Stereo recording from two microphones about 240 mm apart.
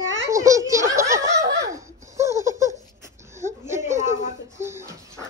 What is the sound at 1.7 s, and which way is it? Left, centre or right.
Laughter, centre.